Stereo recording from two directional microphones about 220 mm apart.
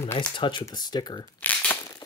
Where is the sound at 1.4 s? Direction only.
10° left (ahead or behind).